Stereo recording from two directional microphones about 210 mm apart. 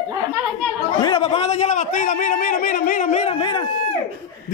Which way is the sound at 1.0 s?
25° left (ahead or behind).